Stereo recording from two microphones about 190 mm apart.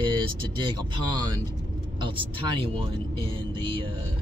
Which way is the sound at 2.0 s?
25° right (ahead or behind).